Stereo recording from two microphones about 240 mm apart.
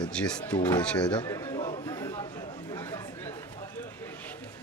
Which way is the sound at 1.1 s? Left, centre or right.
Centre.